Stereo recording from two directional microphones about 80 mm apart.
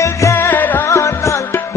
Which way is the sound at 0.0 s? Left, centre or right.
Left.